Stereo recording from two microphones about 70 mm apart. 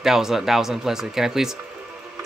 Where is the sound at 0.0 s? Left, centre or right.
Centre.